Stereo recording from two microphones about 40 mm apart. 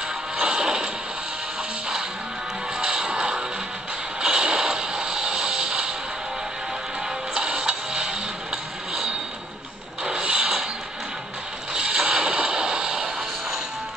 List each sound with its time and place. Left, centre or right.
0.4 s music: right
2.8 s music: right
7.3 s music: right
10.0 s creak: centre
11.7 s music: right